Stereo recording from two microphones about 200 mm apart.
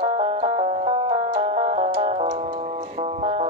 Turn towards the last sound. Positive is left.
turn(degrees=-30)  # may be behind; listen again after turning